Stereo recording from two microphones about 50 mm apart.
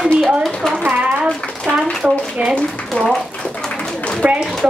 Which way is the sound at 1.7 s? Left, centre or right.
Left.